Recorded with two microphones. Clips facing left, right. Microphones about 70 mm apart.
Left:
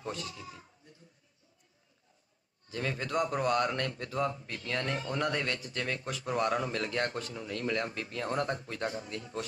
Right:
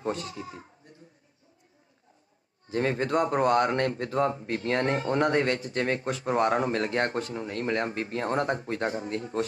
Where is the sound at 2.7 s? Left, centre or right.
Right.